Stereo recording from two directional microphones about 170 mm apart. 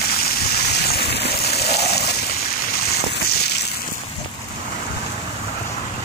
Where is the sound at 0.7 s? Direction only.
75° left (ahead or behind).